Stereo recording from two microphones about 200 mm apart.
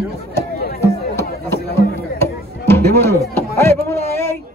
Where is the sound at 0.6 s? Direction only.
50° left (ahead or behind).